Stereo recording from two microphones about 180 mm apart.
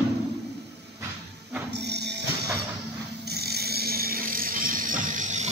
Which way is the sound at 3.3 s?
60° right (ahead or behind).